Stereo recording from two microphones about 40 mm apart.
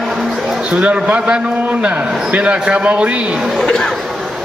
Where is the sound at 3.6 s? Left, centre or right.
Centre.